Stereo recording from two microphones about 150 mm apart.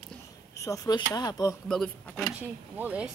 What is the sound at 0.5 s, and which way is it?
Speech, 20° left (ahead or behind).